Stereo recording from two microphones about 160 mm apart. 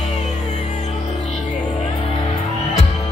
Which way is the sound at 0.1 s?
45° left (ahead or behind).